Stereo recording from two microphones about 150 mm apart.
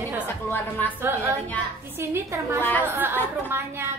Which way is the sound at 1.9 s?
15° right (ahead or behind).